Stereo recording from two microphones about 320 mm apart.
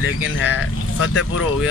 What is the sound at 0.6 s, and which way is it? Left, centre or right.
Speech, left.